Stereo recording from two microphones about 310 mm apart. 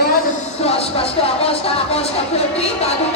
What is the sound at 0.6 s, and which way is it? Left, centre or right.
Music, centre.